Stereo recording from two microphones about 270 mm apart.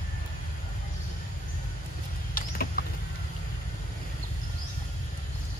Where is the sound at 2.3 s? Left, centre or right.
Left.